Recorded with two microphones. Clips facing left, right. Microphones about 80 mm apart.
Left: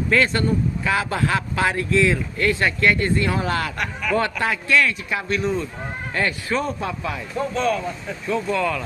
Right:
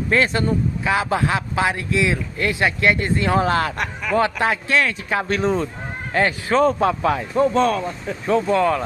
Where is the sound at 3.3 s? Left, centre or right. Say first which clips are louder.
Right 5 dB; right.